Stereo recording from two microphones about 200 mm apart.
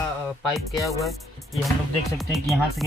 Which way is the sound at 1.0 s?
Centre (ahead or behind).